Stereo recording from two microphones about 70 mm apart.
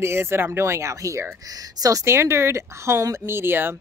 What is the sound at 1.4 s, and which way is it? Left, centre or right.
Speech, right.